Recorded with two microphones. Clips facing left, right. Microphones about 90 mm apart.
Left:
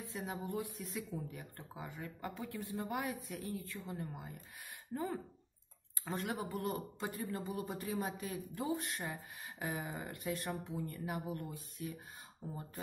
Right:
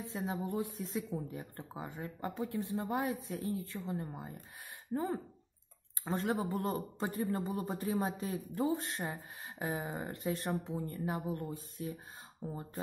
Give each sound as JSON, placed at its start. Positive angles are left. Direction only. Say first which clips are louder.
{"t": 0.0, "sound": "speech", "louder": "right 5 dB", "side_deg": -30}
{"t": 12.4, "sound": "speech", "louder": "right 5 dB", "side_deg": -55}